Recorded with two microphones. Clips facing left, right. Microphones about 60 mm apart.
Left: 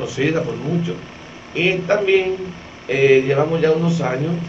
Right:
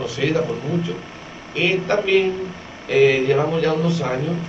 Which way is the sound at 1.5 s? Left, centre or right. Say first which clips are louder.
Left 2 dB; centre.